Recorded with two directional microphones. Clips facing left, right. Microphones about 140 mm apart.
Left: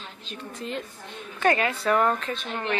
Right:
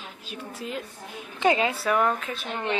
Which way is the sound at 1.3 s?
15° right (ahead or behind).